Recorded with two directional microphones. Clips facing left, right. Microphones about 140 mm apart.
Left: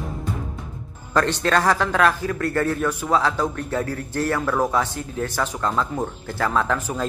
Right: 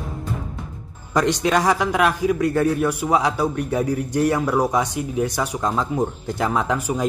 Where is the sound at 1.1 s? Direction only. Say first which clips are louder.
Right 1 dB; 15° right (ahead or behind).